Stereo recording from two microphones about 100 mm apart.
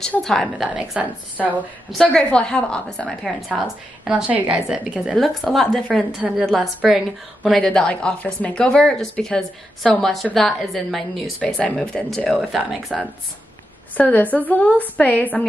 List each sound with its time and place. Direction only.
0.0 s a woman's voice: 5° left (ahead or behind)
0.7 s a woman's voice: 10° right (ahead or behind)
1.9 s a woman's voice: centre (ahead or behind)
4.1 s a woman's voice: 15° right (ahead or behind)
13.9 s speech: 15° left (ahead or behind)